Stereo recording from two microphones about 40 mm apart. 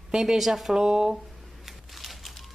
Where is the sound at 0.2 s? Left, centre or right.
Centre.